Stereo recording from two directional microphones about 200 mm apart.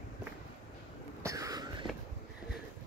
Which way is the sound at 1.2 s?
15° right (ahead or behind).